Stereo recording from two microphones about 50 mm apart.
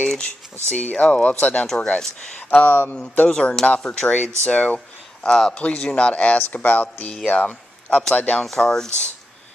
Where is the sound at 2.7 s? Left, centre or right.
Left.